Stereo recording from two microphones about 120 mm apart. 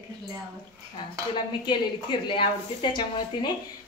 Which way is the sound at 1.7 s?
40° left (ahead or behind).